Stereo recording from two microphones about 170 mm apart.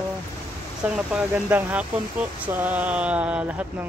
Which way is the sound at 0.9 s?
10° right (ahead or behind).